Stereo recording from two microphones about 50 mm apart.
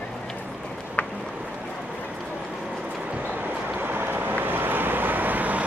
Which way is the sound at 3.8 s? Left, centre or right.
Right.